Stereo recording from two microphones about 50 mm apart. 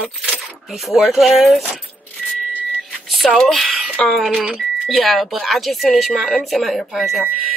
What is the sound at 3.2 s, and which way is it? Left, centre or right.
Speech, centre.